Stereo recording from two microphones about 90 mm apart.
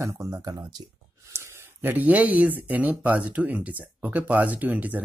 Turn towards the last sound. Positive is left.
turn(degrees=-20)  # may be behind; listen again after turning